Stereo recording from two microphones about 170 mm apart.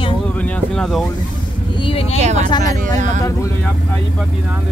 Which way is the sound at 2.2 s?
40° right (ahead or behind).